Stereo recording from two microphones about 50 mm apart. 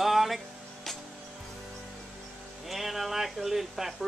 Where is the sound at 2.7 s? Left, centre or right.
Centre.